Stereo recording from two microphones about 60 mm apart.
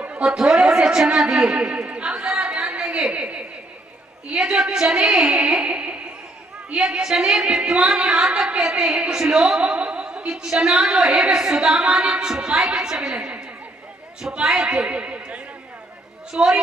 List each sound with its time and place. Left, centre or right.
0.0 s a woman's voice: right
1.3 s chatter: centre
2.8 s a sound: centre
4.3 s music: centre
16.3 s a woman's voice: centre